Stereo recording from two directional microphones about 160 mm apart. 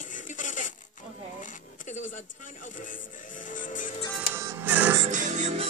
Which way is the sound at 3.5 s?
55° left (ahead or behind).